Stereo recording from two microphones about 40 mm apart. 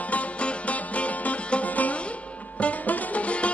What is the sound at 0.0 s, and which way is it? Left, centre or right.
Music, left.